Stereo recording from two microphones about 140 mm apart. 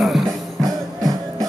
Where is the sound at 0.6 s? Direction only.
25° right (ahead or behind).